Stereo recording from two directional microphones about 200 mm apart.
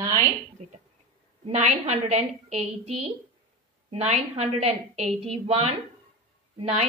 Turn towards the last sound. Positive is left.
turn(degrees=-35)  # may be behind; listen again after turning